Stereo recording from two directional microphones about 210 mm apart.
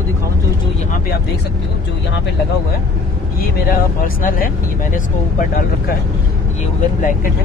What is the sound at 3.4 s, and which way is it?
Speech, 45° left (ahead or behind).